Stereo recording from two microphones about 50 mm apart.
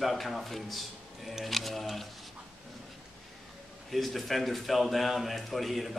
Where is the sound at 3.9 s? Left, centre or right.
Centre.